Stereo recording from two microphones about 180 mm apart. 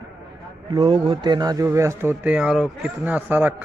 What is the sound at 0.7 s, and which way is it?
Speech, 30° right (ahead or behind).